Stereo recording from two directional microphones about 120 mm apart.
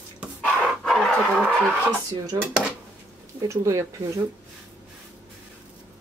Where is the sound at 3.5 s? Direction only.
25° right (ahead or behind).